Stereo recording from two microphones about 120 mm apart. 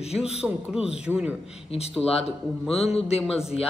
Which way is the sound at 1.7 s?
60° left (ahead or behind).